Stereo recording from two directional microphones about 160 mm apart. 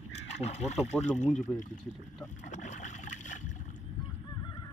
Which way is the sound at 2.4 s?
50° left (ahead or behind).